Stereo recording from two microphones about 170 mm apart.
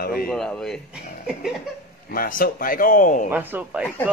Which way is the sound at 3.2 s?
10° right (ahead or behind).